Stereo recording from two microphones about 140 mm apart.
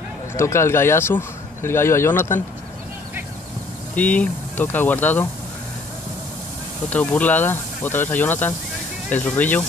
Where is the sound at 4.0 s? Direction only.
10° left (ahead or behind).